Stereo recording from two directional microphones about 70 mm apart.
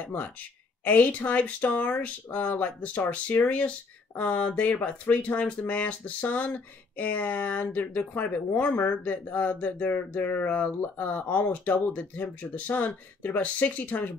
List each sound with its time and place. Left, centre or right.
0.0 s speech: left